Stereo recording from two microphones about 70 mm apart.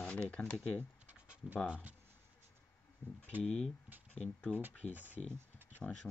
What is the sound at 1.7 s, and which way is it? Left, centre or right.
Speech, right.